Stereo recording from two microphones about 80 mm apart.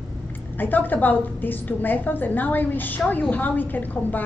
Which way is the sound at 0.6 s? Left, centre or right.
Left.